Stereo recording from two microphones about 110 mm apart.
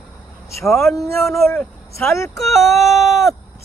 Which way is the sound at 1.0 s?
25° left (ahead or behind).